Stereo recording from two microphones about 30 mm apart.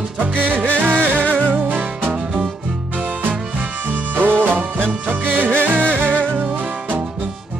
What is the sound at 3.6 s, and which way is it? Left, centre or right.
Music, right.